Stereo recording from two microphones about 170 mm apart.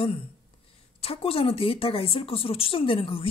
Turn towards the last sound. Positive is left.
turn(degrees=30)  # may be behind; listen again after turning